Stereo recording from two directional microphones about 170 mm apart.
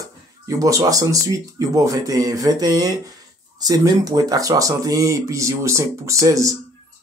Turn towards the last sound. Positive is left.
turn(degrees=-20)  # may be behind; listen again after turning